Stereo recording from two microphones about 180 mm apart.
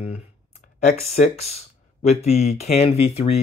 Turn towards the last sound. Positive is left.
turn(degrees=35)  # may be behind; listen again after turning